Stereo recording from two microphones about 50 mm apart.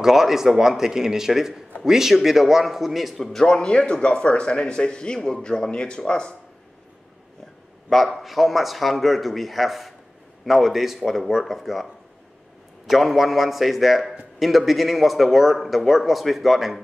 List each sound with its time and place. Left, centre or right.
0.0 s a man's voice: centre
3.4 s speech: centre
8.2 s a man's voice: centre